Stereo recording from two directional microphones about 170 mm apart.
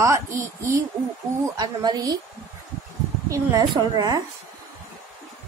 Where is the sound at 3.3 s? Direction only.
25° right (ahead or behind).